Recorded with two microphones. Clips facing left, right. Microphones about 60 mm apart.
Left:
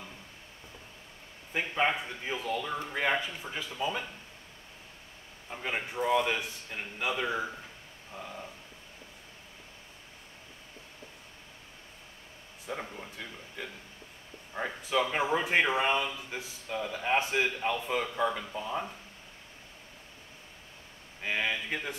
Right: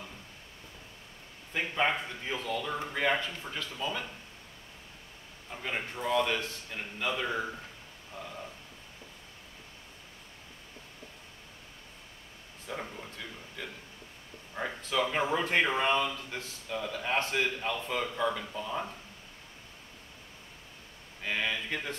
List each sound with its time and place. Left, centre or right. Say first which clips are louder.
1.5 s speech: left 1 dB; centre
5.5 s speech: left 1 dB; centre
12.6 s a sound: left 1 dB; centre
14.5 s speech: left 2 dB; centre
21.2 s speech: left 1 dB; centre